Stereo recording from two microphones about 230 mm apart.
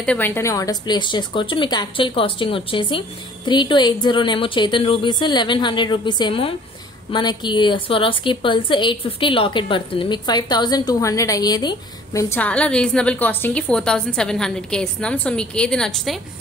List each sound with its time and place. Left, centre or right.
0.0 s a woman's voice: centre